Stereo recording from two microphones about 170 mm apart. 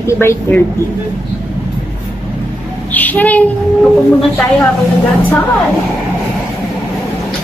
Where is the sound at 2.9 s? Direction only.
10° left (ahead or behind).